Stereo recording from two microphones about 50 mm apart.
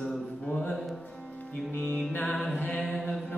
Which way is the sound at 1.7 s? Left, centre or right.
Left.